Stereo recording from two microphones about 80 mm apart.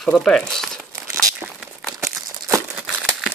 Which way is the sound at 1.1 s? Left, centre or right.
Centre.